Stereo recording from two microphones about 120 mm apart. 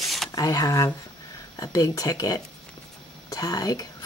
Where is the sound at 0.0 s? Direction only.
Centre (ahead or behind).